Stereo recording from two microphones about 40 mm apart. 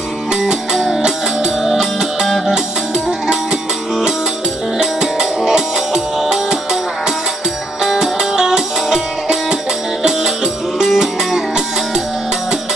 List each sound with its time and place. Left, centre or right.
1.6 s music: centre
2.2 s music: centre
4.7 s music: centre
7.8 s music: centre